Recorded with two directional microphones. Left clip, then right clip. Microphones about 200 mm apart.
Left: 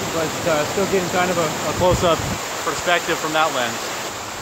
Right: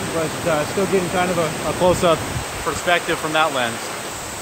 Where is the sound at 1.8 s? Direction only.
20° right (ahead or behind).